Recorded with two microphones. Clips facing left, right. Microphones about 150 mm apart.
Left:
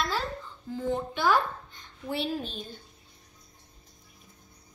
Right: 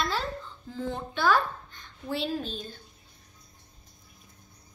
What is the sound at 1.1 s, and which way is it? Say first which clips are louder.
Speech: right 3 dB; 15° left (ahead or behind).